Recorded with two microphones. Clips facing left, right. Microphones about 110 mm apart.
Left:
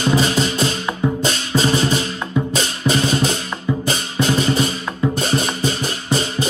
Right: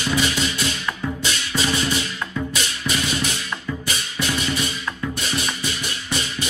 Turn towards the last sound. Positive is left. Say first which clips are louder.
# left 7 dB
turn(degrees=35)  # may be behind; listen again after turning